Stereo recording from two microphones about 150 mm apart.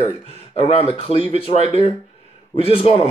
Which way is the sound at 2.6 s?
40° left (ahead or behind).